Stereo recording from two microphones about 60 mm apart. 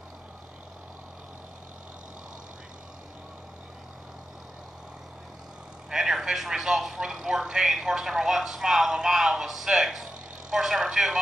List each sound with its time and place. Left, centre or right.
5.9 s a man's voice: centre